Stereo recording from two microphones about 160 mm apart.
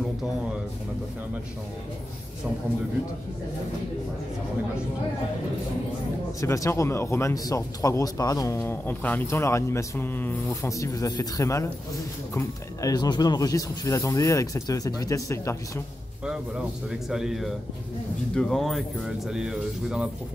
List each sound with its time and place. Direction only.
6.4 s speech: 20° left (ahead or behind)
17.1 s speech: centre (ahead or behind)